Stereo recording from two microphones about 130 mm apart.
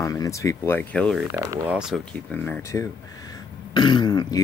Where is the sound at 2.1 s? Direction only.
10° left (ahead or behind).